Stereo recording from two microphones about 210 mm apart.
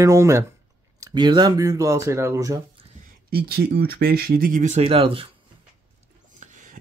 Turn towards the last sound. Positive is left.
turn(degrees=-40)  # may be behind; listen again after turning